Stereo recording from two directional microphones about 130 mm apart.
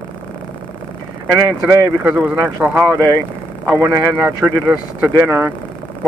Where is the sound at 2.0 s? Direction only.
15° right (ahead or behind).